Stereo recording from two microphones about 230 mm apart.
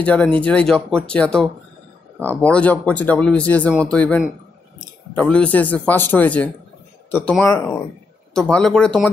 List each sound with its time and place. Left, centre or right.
0.0 s a man's voice: centre